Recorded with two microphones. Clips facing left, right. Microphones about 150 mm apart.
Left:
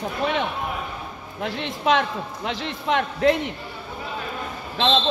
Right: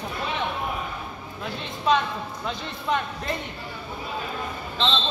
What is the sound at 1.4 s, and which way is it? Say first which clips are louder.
A man's voice: left 6 dB; 80° left.